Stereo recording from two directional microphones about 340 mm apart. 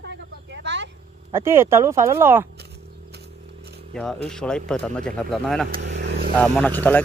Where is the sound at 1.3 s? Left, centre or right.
Centre.